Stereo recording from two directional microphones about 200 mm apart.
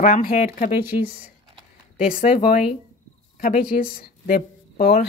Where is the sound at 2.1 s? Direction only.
45° left (ahead or behind).